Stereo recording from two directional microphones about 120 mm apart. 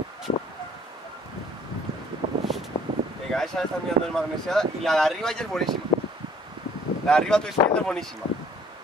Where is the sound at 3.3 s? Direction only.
5° left (ahead or behind).